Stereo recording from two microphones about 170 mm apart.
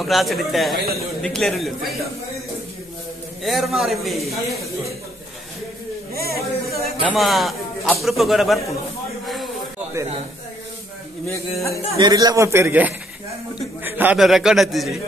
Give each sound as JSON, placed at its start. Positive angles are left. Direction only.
{"t": 0.0, "sound": "a man's voice", "side_deg": 0}
{"t": 3.4, "sound": "a man's voice", "side_deg": 0}
{"t": 6.1, "sound": "speech", "side_deg": -65}
{"t": 7.0, "sound": "a man's voice", "side_deg": 0}
{"t": 10.0, "sound": "speech", "side_deg": -15}
{"t": 12.0, "sound": "a man's voice", "side_deg": -25}